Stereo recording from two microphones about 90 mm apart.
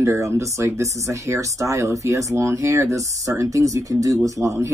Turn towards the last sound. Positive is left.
turn(degrees=-35)  # may be behind; listen again after turning